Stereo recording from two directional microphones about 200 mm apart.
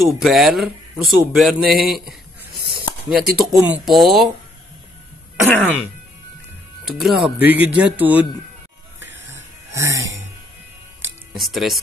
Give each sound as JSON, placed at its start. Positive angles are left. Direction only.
{"t": 0.0, "sound": "speech", "side_deg": 0}
{"t": 2.5, "sound": "snake", "side_deg": -50}
{"t": 3.5, "sound": "speech", "side_deg": 0}
{"t": 5.5, "sound": "throat clearing", "side_deg": 5}
{"t": 6.8, "sound": "speech", "side_deg": -5}
{"t": 9.8, "sound": "speech", "side_deg": -15}
{"t": 11.3, "sound": "speech", "side_deg": 0}